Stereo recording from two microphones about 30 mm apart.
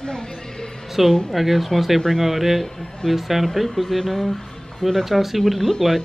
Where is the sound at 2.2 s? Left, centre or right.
Centre.